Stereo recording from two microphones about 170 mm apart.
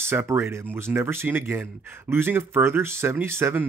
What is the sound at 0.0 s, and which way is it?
Speech, 15° right (ahead or behind).